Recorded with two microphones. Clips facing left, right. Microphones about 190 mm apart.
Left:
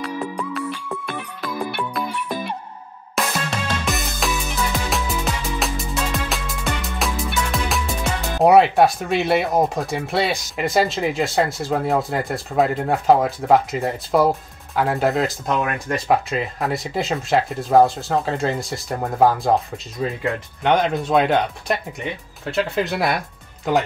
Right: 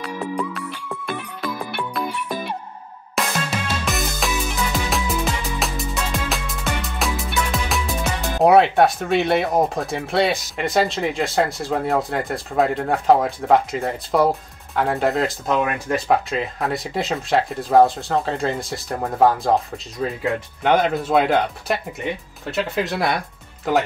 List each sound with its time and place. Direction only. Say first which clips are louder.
3.2 s music: even; centre (ahead or behind)
8.4 s speech: left 1 dB; centre (ahead or behind)